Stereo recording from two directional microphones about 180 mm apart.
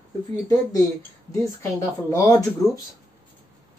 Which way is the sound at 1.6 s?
15° left (ahead or behind).